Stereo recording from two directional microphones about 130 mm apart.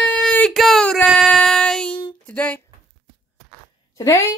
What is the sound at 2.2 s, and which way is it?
Music, 10° left (ahead or behind).